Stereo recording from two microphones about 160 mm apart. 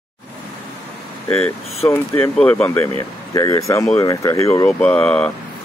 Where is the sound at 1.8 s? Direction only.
15° left (ahead or behind).